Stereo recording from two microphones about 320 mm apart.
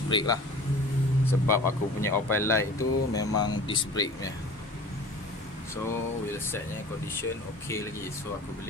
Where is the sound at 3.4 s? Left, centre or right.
Centre.